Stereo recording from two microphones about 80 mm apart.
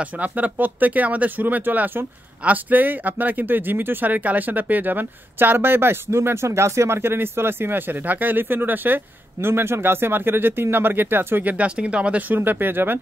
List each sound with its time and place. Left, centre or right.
0.0 s speech: centre